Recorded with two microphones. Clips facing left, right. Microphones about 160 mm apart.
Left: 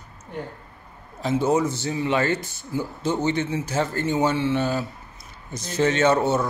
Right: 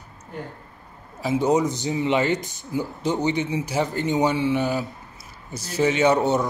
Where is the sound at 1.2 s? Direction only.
15° right (ahead or behind).